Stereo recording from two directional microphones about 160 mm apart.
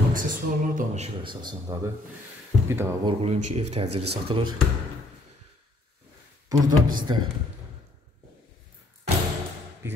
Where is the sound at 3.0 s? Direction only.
35° right (ahead or behind).